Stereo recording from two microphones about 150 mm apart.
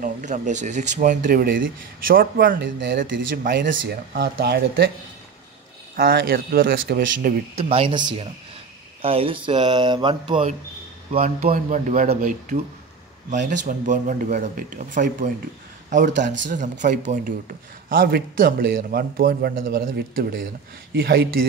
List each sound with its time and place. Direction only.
0.0 s speech: 55° right (ahead or behind); by 4.9 s 90° right
5.9 s speech: 80° right
7.5 s speech: 40° right (ahead or behind)
11.1 s speech: 70° right (ahead or behind); by 21.3 s 90° right